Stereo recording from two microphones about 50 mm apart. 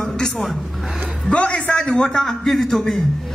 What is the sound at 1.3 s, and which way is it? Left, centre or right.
A man's voice, left.